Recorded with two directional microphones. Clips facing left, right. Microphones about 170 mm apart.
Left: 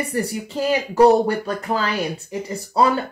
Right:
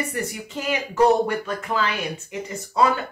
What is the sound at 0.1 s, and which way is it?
Speech, 35° left (ahead or behind).